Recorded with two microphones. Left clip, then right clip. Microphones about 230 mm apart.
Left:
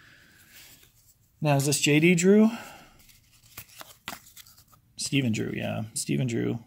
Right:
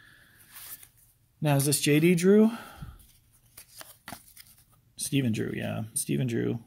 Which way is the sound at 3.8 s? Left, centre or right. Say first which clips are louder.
Left 4 dB; centre.